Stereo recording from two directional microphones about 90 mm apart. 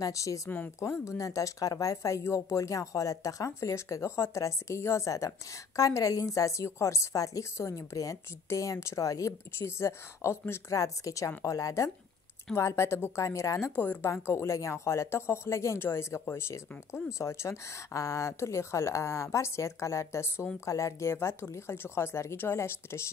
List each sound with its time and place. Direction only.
0.0 s speech: 40° left (ahead or behind)
10.8 s speech: 40° left (ahead or behind)